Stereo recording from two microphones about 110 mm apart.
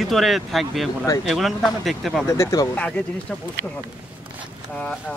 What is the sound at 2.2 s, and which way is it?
Speech, 25° left (ahead or behind).